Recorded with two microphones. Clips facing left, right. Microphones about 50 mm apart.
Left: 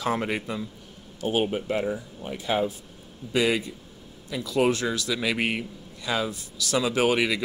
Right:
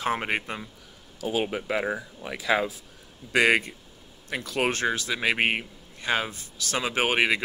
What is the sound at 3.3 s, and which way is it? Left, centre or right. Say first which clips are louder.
A man's voice: right 3 dB; right.